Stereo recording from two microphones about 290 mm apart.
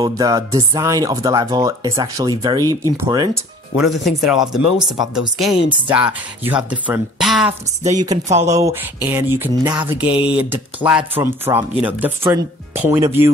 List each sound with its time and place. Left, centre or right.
0.0 s speech: centre
3.7 s speech: centre